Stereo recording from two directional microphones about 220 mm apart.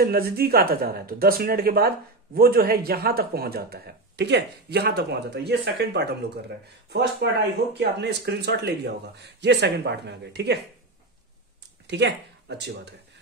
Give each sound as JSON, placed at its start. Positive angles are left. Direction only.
{"t": 0.0, "sound": "speech", "side_deg": -45}
{"t": 11.9, "sound": "speech", "side_deg": -50}